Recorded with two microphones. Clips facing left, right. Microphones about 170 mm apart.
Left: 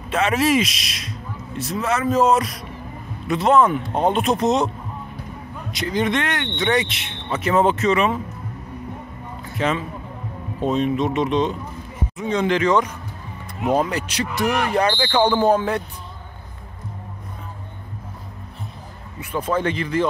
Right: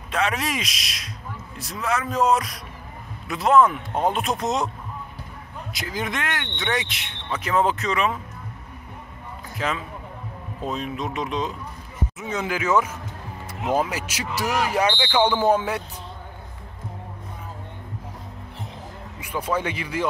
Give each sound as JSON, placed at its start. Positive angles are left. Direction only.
{"t": 0.1, "sound": "speech", "side_deg": 0}
{"t": 5.7, "sound": "speech", "side_deg": 0}
{"t": 9.6, "sound": "speech", "side_deg": 0}
{"t": 19.1, "sound": "speech", "side_deg": -10}